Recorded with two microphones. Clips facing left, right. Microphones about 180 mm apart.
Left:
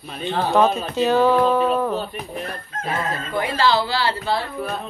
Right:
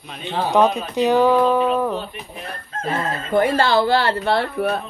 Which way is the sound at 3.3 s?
50° right (ahead or behind).